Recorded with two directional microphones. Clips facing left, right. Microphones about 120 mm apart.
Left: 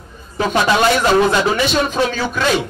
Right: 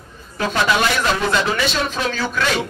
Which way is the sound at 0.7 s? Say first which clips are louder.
Left 6 dB; 30° left (ahead or behind).